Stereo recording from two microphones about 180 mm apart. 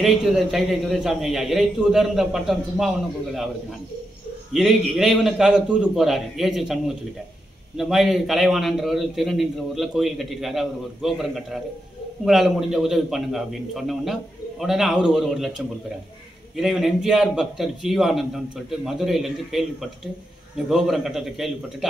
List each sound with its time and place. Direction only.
0.0 s a man's voice: centre (ahead or behind)
4.5 s a man's voice: centre (ahead or behind)
16.5 s a man's voice: centre (ahead or behind)